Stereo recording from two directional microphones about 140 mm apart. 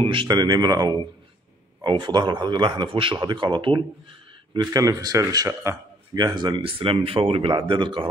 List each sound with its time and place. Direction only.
0.0 s speech: 35° right (ahead or behind); by 5.8 s 20° right (ahead or behind)
6.1 s speech: 30° right (ahead or behind)